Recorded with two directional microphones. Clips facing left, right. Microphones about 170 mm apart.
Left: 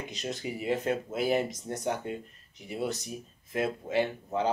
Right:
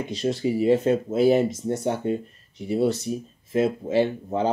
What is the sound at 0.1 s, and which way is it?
Speech, 30° right (ahead or behind).